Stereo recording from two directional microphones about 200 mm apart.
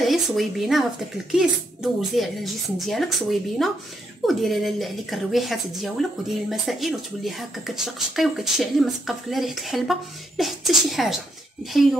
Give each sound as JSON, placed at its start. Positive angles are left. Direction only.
{"t": 0.0, "sound": "speech", "side_deg": 0}